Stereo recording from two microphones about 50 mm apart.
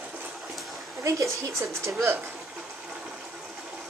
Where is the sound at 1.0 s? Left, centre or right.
Right.